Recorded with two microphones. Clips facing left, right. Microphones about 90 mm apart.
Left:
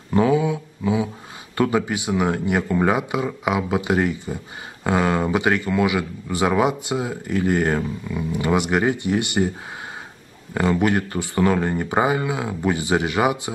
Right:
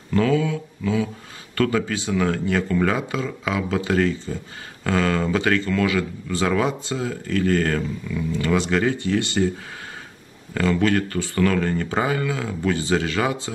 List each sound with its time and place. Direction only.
0.1 s speech: 20° left (ahead or behind)
10.5 s speech: 20° left (ahead or behind)